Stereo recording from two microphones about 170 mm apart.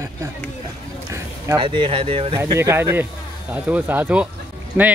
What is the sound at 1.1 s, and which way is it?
Speech, 25° right (ahead or behind).